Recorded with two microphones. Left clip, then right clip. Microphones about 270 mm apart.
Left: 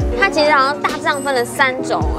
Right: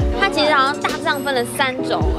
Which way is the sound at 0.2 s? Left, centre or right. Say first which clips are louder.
Left 3 dB; left.